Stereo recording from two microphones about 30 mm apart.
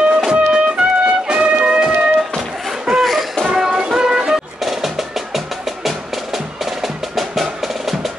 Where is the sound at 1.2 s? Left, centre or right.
Right.